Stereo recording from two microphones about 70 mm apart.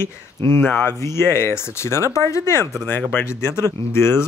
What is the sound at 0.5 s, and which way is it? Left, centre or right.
Speech, left.